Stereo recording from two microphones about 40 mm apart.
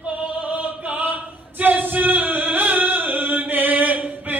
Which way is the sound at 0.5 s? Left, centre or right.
Right.